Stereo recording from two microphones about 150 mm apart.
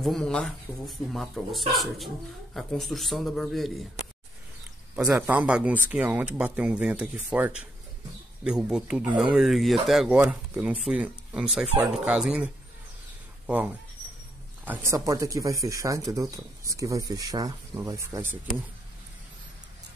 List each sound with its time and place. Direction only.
0.0 s speech: 5° left (ahead or behind)
4.9 s speech: 10° right (ahead or behind)
14.6 s speech: 15° right (ahead or behind)